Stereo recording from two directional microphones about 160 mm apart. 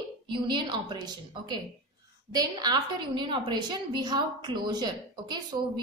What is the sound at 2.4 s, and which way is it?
A woman's voice, 25° right (ahead or behind).